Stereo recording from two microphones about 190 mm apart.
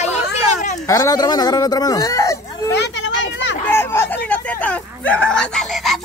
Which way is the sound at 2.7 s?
65° left (ahead or behind).